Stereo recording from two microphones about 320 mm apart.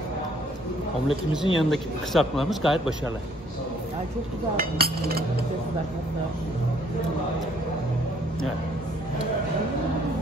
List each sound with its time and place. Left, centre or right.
1.0 s a man's voice: centre
4.6 s speech: right